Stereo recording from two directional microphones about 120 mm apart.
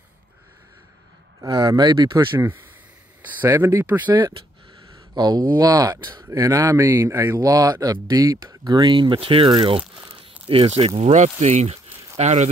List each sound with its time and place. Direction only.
1.4 s speech: 35° right (ahead or behind)
2.3 s speech: 20° right (ahead or behind)
5.1 s speech: 35° right (ahead or behind)
10.1 s crumpling: 50° right (ahead or behind)
11.0 s speech: 65° right (ahead or behind)